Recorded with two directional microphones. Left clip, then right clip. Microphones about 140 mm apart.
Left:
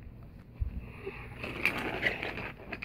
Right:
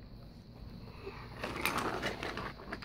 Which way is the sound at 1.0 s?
25° left (ahead or behind).